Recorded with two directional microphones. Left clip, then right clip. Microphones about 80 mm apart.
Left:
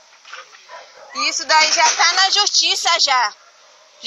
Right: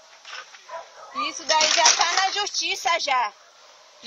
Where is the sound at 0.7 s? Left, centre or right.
Right.